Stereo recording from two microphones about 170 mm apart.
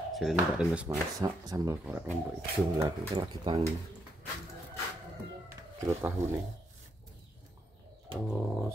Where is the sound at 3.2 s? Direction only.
30° right (ahead or behind).